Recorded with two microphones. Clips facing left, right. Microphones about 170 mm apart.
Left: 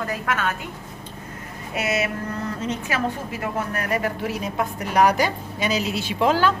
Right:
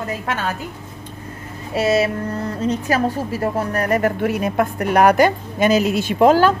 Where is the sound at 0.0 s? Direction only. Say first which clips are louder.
Right 1 dB; 25° right (ahead or behind).